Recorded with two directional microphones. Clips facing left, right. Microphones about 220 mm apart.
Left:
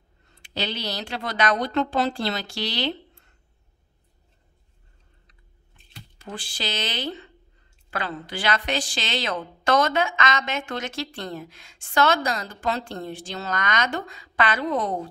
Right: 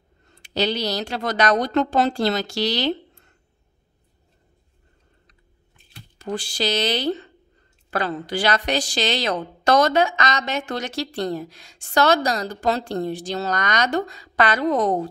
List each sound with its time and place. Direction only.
0.3 s a woman's voice: 40° right (ahead or behind)
6.1 s a woman's voice: 45° right (ahead or behind)